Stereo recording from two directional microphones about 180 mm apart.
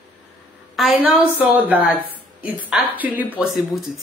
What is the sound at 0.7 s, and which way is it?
A woman's voice, centre (ahead or behind).